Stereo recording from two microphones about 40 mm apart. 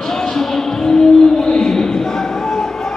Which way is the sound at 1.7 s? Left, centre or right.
Centre.